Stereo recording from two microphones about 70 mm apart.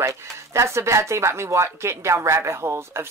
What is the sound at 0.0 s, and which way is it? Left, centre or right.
Speech, right.